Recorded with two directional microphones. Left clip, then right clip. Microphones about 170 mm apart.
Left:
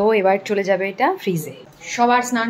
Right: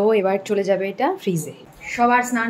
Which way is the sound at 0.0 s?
10° right (ahead or behind).